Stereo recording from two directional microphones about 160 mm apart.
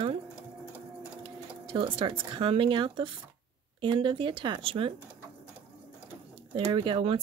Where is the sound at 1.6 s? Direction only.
30° right (ahead or behind).